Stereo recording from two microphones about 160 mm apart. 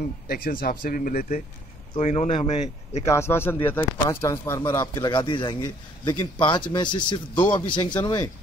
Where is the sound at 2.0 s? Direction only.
45° left (ahead or behind).